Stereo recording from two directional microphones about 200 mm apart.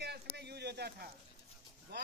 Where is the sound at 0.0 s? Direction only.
55° right (ahead or behind).